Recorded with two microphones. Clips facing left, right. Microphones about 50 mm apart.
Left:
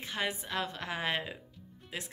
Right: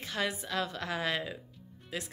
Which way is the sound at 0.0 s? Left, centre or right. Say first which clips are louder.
Right 1 dB; left.